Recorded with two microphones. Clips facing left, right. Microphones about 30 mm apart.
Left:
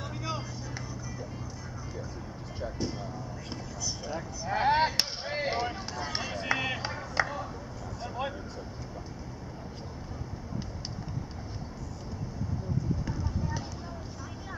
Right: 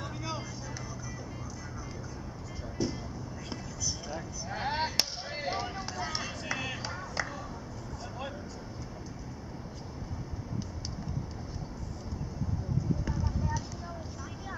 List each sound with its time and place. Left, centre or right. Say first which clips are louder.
0.0 s vehicle: left 2 dB; centre
2.8 s speech: right 3 dB; centre
3.8 s chop: left 2 dB; centre
6.2 s a sound: left 5 dB; left
8.0 s vehicle: left 6 dB; left